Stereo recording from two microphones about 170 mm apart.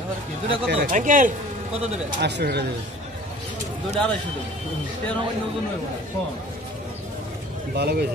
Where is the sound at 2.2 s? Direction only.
80° right.